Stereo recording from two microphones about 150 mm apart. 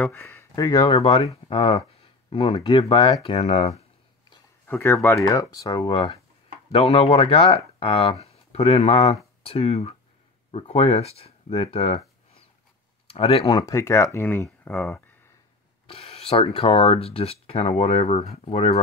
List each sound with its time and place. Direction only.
0.0 s speech: 15° left (ahead or behind); by 3.8 s 40° left (ahead or behind)
4.6 s speech: 15° left (ahead or behind); by 13.6 s 40° left (ahead or behind)
13.6 s speech: 20° left (ahead or behind)
15.9 s speech: 40° left (ahead or behind)